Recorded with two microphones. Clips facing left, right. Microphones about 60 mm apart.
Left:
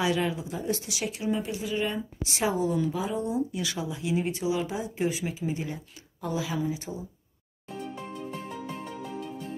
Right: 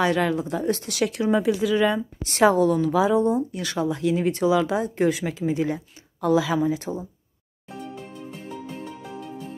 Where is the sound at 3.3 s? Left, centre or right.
Right.